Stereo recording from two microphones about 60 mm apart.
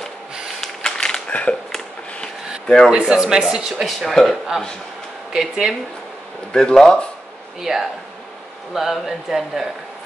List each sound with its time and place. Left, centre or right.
0.6 s a sound: centre
1.3 s a sound: left
2.6 s speech: centre
2.9 s a man's voice: centre
3.8 s speech: centre
5.3 s a man's voice: centre
6.5 s speech: centre
7.6 s speech: centre